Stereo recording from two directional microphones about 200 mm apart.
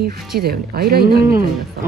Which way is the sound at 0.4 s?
50° right (ahead or behind).